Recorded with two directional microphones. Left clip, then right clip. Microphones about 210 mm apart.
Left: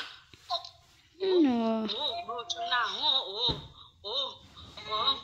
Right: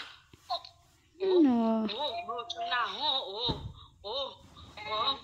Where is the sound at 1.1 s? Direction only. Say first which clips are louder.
Even; 5° right (ahead or behind).